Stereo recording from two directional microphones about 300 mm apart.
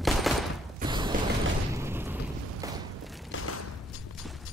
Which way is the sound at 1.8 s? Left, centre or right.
Centre.